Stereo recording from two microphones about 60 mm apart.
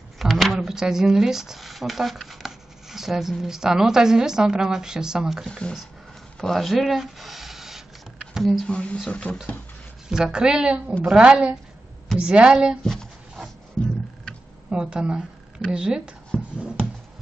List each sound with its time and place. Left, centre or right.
0.2 s speech: centre
5.5 s speech: centre
8.6 s speech: centre
10.0 s a woman's voice: centre
14.7 s a woman's voice: centre
16.3 s a sound: centre